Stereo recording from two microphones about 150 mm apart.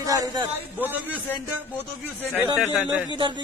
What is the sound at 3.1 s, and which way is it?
Speech, 30° right (ahead or behind).